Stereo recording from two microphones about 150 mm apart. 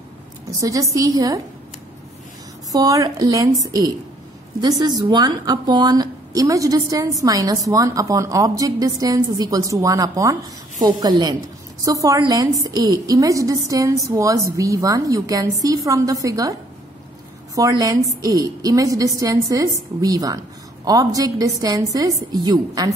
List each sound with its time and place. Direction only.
0.5 s speech: 20° right (ahead or behind)
2.7 s speech: 25° right (ahead or behind)
17.6 s speech: 25° right (ahead or behind)